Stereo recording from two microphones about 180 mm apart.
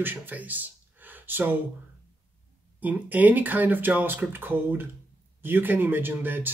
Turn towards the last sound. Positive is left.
turn(degrees=-10)  # may be behind; listen again after turning